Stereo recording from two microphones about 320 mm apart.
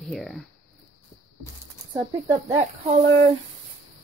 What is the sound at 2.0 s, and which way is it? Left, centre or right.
Speech, centre.